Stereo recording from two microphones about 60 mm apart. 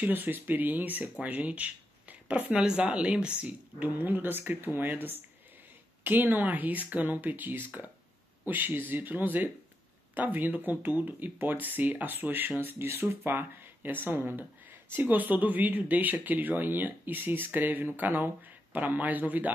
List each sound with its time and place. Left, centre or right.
0.0 s speech: right
2.5 s speech: centre; by 19.5 s right